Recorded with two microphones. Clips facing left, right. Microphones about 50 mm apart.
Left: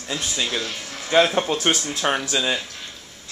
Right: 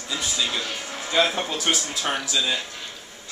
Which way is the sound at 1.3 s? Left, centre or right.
Left.